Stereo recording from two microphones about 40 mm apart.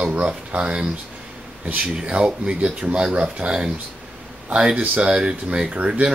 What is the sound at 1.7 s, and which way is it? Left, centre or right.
Speech, right.